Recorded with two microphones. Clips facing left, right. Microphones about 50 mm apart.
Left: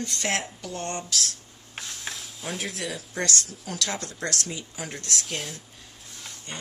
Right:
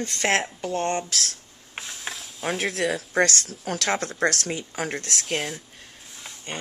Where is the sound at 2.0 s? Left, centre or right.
Centre.